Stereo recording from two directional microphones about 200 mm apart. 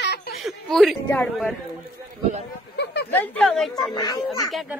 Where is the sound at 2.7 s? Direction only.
60° left (ahead or behind).